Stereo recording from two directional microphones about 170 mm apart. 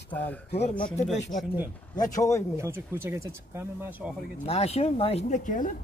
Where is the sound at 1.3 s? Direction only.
50° left (ahead or behind).